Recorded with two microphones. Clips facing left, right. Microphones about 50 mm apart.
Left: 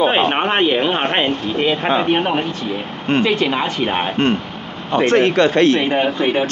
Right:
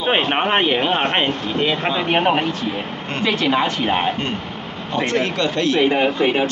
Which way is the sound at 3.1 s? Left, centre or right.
Left.